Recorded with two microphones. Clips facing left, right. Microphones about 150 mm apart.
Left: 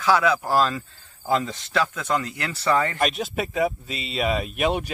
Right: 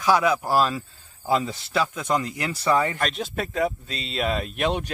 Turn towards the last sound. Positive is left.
turn(degrees=5)  # may be behind; listen again after turning